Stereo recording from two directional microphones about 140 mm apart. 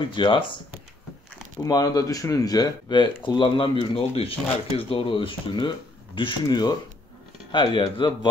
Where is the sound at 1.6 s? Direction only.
25° left (ahead or behind).